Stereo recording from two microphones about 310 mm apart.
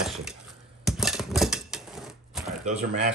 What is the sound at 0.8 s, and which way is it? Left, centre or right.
Typewriter, centre.